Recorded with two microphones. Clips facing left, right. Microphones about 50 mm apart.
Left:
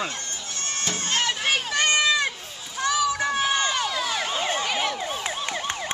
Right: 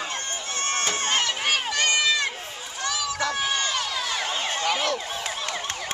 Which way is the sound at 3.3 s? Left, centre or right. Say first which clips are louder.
Left 3 dB; centre.